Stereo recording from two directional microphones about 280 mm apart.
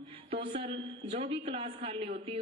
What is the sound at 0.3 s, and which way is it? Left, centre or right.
A man's voice, centre.